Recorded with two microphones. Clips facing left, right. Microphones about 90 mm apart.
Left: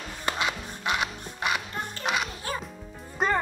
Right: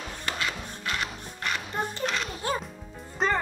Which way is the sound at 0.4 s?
15° left (ahead or behind).